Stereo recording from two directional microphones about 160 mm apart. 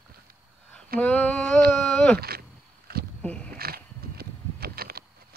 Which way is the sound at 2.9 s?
75° right (ahead or behind).